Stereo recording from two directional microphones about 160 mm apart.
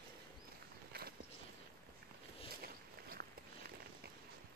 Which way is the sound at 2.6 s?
70° right (ahead or behind).